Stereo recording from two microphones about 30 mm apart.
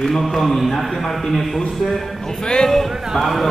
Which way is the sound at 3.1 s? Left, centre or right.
Centre.